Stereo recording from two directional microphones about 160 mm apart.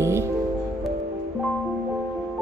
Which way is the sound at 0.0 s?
15° right (ahead or behind).